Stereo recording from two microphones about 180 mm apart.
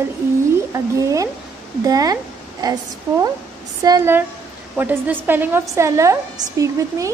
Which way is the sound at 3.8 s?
20° right (ahead or behind).